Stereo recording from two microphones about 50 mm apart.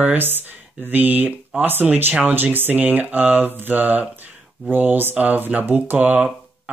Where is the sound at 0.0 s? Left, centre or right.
Right.